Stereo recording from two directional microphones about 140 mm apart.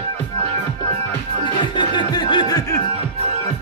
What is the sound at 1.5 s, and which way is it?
Music, 35° left (ahead or behind).